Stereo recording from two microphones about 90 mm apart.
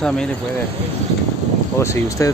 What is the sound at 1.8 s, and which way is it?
Speech, 35° left (ahead or behind).